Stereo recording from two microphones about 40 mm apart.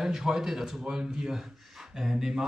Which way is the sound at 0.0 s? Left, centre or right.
Centre.